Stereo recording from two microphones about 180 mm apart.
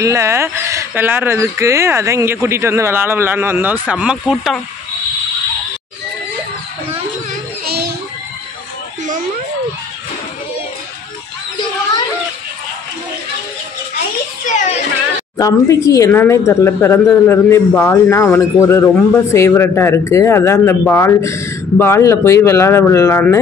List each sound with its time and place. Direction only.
0.0 s speech: 15° right (ahead or behind)
7.6 s children playing: 65° right (ahead or behind)
14.4 s children playing: 40° left (ahead or behind)
15.3 s speech: 20° left (ahead or behind)